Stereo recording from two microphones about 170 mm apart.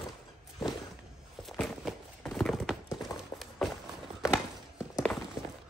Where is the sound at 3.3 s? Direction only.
20° left (ahead or behind).